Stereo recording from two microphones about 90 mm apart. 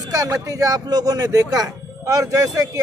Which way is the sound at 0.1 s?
40° right (ahead or behind).